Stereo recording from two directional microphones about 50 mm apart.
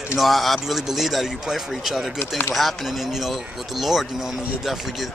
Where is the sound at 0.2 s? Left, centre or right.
Centre.